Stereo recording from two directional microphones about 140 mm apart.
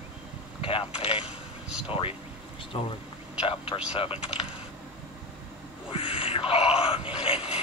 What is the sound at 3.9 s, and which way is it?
Speech, 45° left (ahead or behind).